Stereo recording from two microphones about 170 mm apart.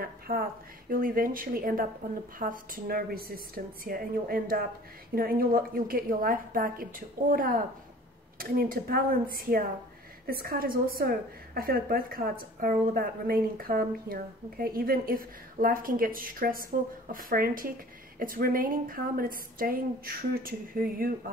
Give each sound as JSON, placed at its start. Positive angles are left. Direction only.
{"t": 0.3, "sound": "speech", "side_deg": -60}